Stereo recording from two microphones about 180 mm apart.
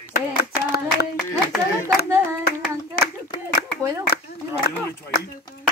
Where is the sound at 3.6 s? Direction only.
60° left (ahead or behind).